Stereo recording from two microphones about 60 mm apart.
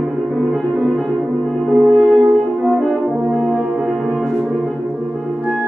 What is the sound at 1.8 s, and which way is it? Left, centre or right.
French horn, right.